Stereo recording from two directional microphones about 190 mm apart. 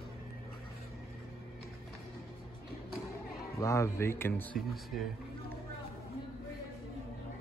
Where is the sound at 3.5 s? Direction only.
15° left (ahead or behind).